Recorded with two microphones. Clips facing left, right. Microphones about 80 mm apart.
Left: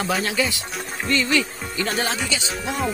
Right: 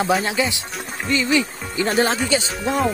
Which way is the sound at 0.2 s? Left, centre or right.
Right.